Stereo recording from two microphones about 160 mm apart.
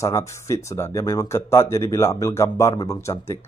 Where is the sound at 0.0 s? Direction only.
20° left (ahead or behind).